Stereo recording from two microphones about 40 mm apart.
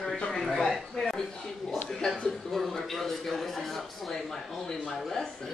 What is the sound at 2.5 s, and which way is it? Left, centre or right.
A woman's voice, centre.